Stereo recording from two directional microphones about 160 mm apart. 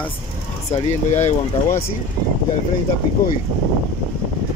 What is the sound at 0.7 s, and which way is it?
Speech, 45° left (ahead or behind).